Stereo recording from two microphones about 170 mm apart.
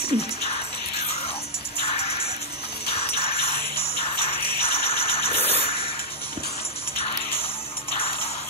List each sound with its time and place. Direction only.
0.0 s music: 35° left (ahead or behind)